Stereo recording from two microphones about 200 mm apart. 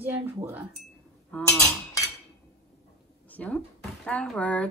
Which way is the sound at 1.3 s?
5° left (ahead or behind).